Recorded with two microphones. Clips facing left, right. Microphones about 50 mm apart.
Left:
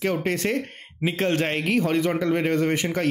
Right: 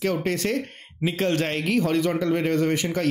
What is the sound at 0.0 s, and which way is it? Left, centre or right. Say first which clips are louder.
A man's voice: even; left.